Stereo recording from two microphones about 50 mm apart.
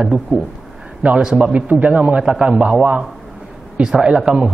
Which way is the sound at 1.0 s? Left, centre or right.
Right.